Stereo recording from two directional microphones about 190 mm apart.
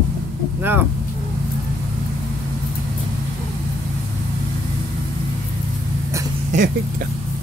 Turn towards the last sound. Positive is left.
turn(degrees=-40)  # may be behind; listen again after turning